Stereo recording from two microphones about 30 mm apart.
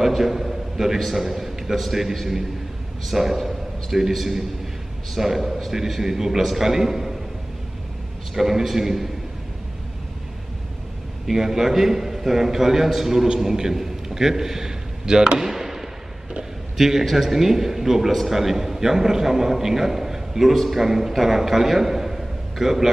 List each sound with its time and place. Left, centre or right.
0.0 s a man's voice: centre
8.4 s a man's voice: centre
11.2 s a man's voice: centre
15.3 s a sound: centre
16.7 s a man's voice: centre